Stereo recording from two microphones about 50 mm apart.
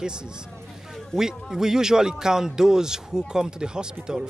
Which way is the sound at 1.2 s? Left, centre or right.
Centre.